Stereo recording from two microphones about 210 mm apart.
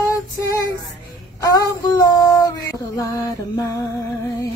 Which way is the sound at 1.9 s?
20° left (ahead or behind).